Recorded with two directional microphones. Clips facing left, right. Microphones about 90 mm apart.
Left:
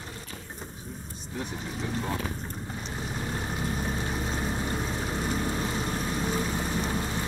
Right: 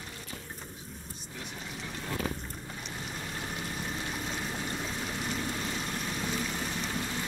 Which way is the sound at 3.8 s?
30° left (ahead or behind).